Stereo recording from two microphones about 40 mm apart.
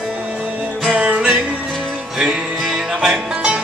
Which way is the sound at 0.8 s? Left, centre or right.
Right.